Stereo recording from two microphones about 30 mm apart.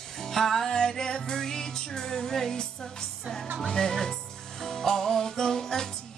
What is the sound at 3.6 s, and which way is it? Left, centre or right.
Speech, centre.